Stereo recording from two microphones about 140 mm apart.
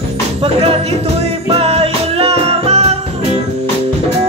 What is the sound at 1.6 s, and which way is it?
Music, 45° right (ahead or behind).